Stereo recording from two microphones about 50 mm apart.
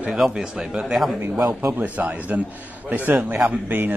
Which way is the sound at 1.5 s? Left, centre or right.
Right.